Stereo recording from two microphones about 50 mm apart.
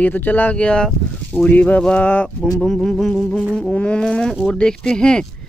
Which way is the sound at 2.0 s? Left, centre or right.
Left.